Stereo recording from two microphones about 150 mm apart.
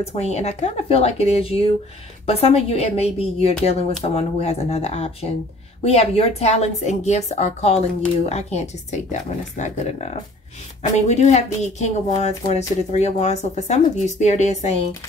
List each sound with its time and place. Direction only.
0.0 s a woman's voice: 45° left (ahead or behind)